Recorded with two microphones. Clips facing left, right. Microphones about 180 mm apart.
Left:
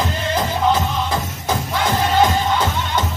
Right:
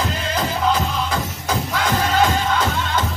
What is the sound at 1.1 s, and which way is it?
Music, 25° left (ahead or behind).